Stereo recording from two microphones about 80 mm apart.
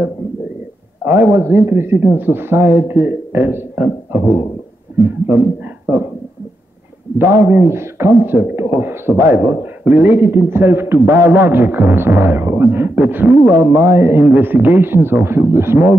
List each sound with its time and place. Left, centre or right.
1.0 s a man's voice: right
7.2 s a man's voice: right